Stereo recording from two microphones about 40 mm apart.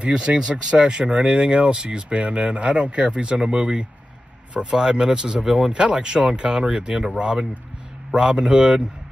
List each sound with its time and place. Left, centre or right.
0.0 s speech: right